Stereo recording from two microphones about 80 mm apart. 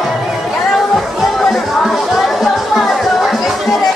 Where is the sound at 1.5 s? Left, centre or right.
Centre.